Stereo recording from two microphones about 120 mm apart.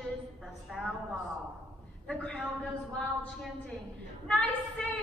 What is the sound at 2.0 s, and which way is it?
Speech, 10° left (ahead or behind).